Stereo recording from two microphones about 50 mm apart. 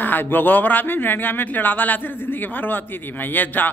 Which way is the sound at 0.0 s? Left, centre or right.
Left.